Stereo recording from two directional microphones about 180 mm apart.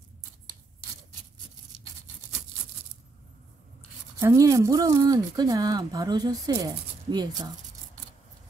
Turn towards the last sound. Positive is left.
turn(degrees=-20)  # may be behind; listen again after turning